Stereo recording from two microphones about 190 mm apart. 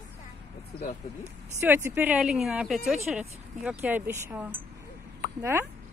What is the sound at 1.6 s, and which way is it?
Speech, 10° right (ahead or behind).